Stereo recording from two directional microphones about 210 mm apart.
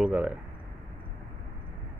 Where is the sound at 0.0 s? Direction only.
5° right (ahead or behind).